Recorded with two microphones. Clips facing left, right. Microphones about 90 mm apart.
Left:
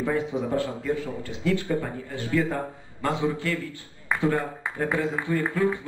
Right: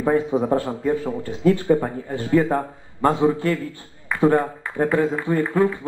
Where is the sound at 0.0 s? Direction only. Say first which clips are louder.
Right 7 dB; 40° right (ahead or behind).